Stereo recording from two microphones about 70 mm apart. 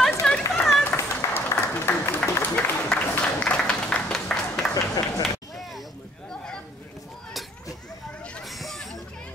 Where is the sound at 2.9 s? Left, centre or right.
Centre.